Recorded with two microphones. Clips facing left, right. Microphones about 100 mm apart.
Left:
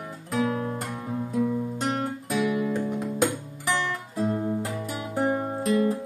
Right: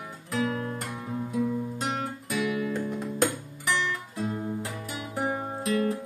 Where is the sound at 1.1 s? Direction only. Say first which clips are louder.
Left 2 dB; centre (ahead or behind).